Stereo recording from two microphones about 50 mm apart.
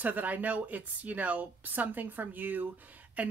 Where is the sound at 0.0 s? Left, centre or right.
Right.